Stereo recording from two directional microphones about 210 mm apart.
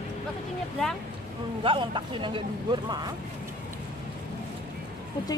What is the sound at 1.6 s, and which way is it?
Speech, 25° right (ahead or behind).